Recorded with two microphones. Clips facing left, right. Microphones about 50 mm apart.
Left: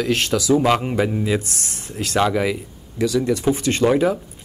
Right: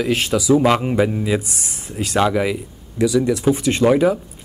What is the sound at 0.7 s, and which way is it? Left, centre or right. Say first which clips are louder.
Speech: right 2 dB; centre.